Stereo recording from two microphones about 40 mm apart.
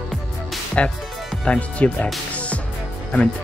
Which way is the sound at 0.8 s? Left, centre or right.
Left.